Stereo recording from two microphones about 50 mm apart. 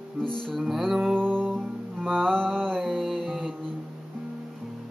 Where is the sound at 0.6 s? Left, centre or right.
Centre.